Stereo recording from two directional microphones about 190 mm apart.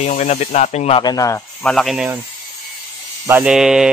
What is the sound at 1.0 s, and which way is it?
Speech, 20° left (ahead or behind).